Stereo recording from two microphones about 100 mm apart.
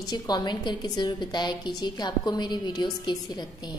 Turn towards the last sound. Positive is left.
turn(degrees=45)  # may be behind; listen again after turning